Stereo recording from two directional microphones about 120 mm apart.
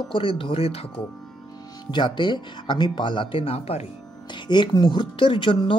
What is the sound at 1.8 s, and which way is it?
Speech, 40° left (ahead or behind).